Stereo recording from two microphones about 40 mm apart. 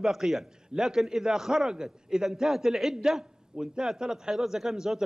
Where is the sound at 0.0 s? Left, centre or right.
Centre.